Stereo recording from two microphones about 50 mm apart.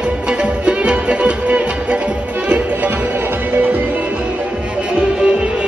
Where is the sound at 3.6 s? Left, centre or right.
Right.